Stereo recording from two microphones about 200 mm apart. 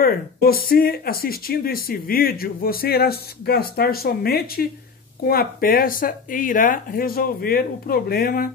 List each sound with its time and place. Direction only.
0.0 s speech: 50° left (ahead or behind)